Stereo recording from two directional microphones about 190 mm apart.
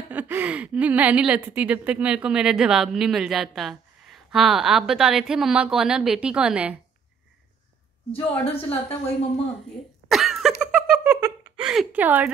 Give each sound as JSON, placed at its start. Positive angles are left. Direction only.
{"t": 0.1, "sound": "speech", "side_deg": -10}
{"t": 8.1, "sound": "a woman's voice", "side_deg": 30}
{"t": 10.0, "sound": "cough", "side_deg": 0}
{"t": 10.7, "sound": "a sound", "side_deg": -5}
{"t": 11.1, "sound": "a sound", "side_deg": -20}
{"t": 11.6, "sound": "speech", "side_deg": -5}